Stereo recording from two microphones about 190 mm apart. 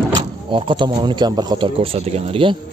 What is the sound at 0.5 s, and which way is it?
Speech, 25° right (ahead or behind).